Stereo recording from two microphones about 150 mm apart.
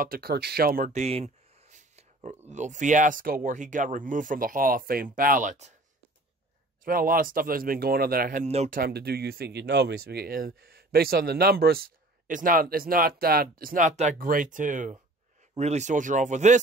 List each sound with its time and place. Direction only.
0.0 s speech: 85° right
0.9 s a sound: 45° right (ahead or behind)
2.5 s speech: 55° right (ahead or behind)
6.8 s speech: 70° right (ahead or behind); by 16.5 s 50° right (ahead or behind)